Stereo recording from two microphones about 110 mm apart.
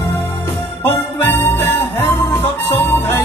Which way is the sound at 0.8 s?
20° left (ahead or behind).